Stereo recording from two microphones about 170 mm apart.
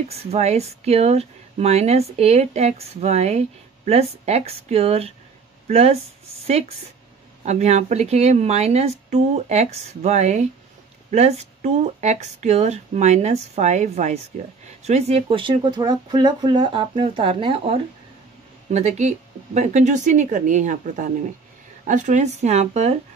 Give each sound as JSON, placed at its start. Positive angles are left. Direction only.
{"t": 0.3, "sound": "speech", "side_deg": -40}
{"t": 7.4, "sound": "speech", "side_deg": -40}